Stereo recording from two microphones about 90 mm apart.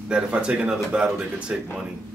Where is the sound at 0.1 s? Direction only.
10° right (ahead or behind).